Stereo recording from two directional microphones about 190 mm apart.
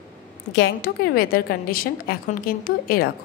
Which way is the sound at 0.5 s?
60° left (ahead or behind).